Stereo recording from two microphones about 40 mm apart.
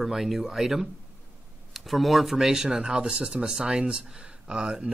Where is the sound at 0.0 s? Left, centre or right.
Centre.